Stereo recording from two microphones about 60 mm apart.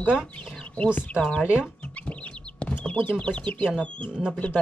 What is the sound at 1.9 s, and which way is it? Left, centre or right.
Chicken, left.